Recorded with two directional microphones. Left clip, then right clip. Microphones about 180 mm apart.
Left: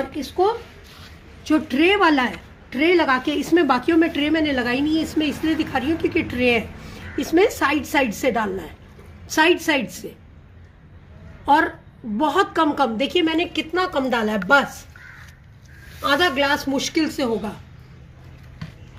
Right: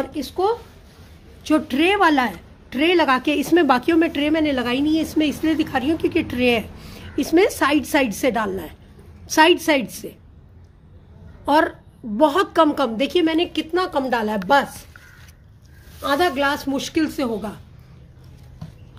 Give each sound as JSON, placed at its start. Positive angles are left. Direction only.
{"t": 0.0, "sound": "speech", "side_deg": -60}
{"t": 1.4, "sound": "a woman's voice", "side_deg": -40}
{"t": 11.4, "sound": "a woman's voice", "side_deg": -35}
{"t": 16.0, "sound": "a woman's voice", "side_deg": -25}